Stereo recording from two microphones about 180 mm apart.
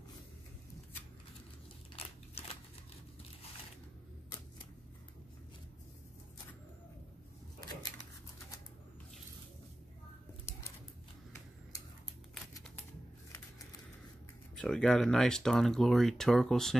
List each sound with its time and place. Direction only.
2.0 s crunch: 30° left (ahead or behind)
14.5 s speech: 5° left (ahead or behind)